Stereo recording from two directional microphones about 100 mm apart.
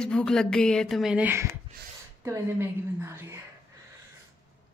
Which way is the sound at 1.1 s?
20° right (ahead or behind).